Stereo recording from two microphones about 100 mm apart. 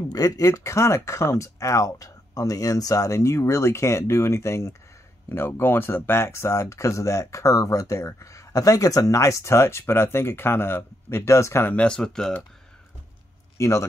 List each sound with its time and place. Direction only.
0.1 s speech: 35° left (ahead or behind)
11.7 s speech: 10° left (ahead or behind)
13.6 s speech: 30° left (ahead or behind)